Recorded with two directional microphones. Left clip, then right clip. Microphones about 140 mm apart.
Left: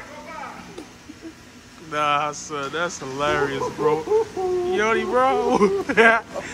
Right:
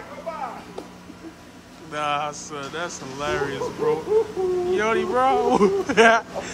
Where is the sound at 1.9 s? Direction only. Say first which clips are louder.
Left 4 dB; centre (ahead or behind).